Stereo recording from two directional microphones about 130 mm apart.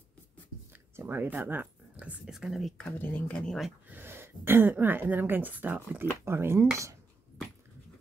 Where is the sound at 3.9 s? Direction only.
15° right (ahead or behind).